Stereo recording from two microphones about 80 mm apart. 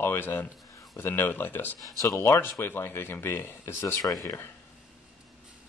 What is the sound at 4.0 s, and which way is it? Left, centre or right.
Speech, left.